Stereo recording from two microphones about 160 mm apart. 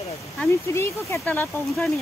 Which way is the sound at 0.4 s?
10° left (ahead or behind).